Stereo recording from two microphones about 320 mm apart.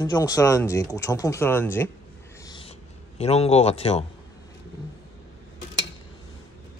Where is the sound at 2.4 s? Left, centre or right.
Centre.